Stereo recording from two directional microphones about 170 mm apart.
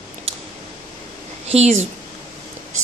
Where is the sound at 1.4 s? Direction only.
40° right (ahead or behind).